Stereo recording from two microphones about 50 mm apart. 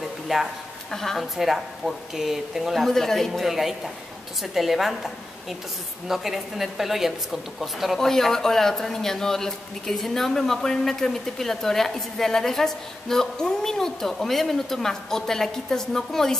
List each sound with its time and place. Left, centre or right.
0.3 s speech: centre
0.9 s speech: centre
8.1 s speech: centre